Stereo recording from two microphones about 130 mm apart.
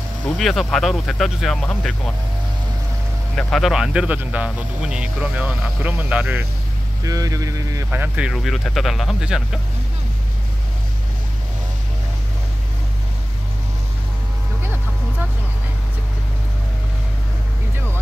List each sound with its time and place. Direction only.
0.4 s speech: centre (ahead or behind)
3.3 s speech: 5° left (ahead or behind); by 6.4 s 10° right (ahead or behind)
7.1 s speech: 25° right (ahead or behind)
7.9 s speech: 10° right (ahead or behind)